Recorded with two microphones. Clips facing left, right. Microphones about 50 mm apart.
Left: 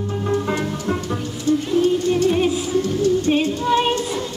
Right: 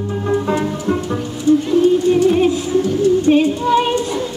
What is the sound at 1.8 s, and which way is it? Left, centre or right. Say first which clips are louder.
Music: right 5 dB; centre.